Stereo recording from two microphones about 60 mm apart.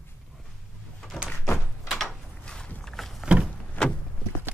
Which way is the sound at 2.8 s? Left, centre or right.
Centre.